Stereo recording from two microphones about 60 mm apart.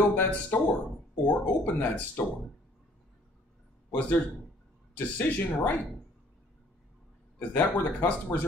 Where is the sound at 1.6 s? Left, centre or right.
Left.